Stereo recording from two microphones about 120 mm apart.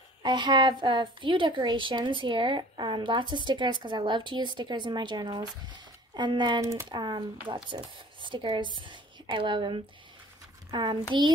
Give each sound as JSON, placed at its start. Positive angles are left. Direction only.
{"t": 0.2, "sound": "a woman's voice", "side_deg": -40}
{"t": 6.6, "sound": "speech", "side_deg": -25}
{"t": 6.9, "sound": "a woman's voice", "side_deg": -40}